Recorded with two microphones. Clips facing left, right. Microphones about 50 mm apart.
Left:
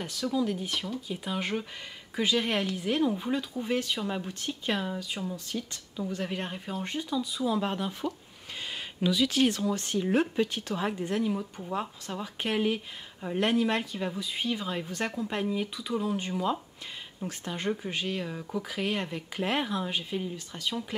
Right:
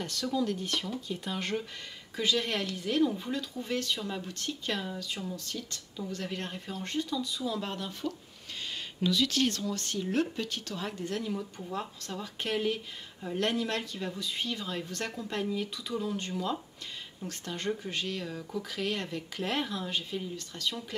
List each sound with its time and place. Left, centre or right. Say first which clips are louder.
0.0 s speech: left 2 dB; centre